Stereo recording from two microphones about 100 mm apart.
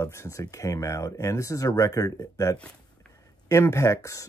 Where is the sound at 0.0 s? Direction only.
30° left (ahead or behind).